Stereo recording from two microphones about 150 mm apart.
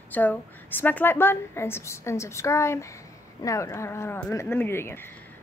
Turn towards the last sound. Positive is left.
turn(degrees=15)  # may be behind; listen again after turning